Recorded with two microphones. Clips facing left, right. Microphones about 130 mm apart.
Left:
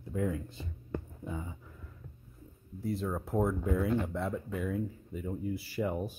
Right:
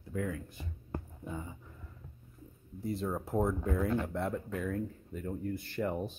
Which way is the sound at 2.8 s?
Centre (ahead or behind).